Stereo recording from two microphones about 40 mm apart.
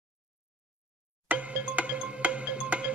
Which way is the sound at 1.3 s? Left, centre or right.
Right.